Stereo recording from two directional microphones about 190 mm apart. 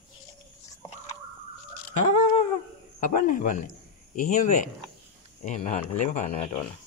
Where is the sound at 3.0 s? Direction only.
45° left (ahead or behind).